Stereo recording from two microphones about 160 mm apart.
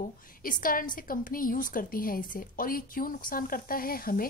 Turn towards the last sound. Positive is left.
turn(degrees=65)  # may be behind; listen again after turning